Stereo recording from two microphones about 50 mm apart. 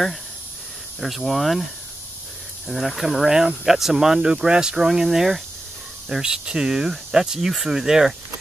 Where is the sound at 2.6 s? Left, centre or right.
Centre.